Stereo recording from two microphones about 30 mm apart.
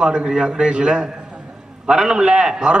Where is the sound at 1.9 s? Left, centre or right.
Right.